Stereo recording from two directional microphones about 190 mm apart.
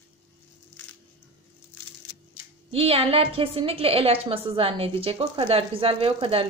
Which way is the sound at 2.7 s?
30° right (ahead or behind).